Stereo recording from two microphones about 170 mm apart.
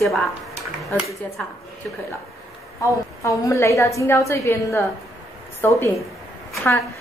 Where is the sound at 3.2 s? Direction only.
15° left (ahead or behind).